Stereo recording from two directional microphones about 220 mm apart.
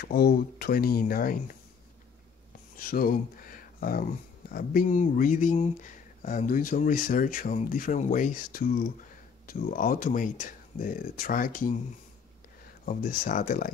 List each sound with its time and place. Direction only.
0.0 s speech: 45° left (ahead or behind)
2.8 s speech: 40° left (ahead or behind)
12.8 s speech: 40° left (ahead or behind)